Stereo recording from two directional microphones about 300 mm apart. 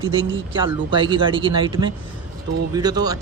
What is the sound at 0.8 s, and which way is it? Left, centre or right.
Speech, centre.